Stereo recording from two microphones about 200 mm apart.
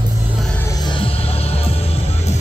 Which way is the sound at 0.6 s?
20° left (ahead or behind).